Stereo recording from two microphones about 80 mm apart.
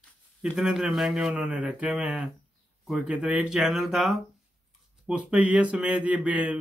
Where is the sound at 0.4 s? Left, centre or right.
Centre.